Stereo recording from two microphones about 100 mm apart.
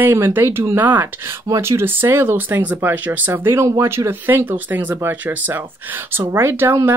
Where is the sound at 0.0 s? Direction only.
20° right (ahead or behind).